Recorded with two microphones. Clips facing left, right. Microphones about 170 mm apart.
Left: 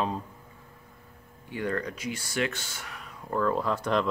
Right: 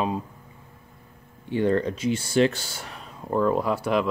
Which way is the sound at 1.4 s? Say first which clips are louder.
Right 8 dB; 25° right (ahead or behind).